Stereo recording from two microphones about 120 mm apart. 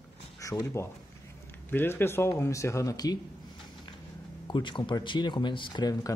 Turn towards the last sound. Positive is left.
turn(degrees=35)  # may be behind; listen again after turning